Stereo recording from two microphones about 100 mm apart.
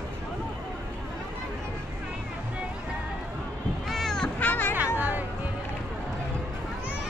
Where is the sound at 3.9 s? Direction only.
Centre (ahead or behind).